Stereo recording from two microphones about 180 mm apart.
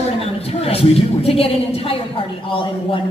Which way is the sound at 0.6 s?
35° left (ahead or behind).